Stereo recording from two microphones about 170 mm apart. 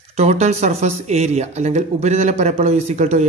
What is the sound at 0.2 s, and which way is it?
Speech, 40° right (ahead or behind).